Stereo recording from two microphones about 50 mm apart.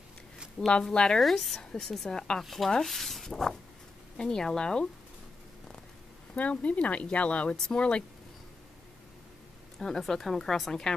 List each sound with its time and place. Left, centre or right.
0.6 s speech: centre
1.2 s speech: centre
1.6 s speech: centre
2.4 s speech: centre
6.3 s speech: left
9.8 s speech: centre